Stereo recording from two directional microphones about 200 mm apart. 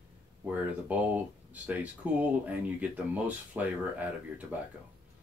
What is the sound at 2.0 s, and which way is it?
Speech, 5° right (ahead or behind).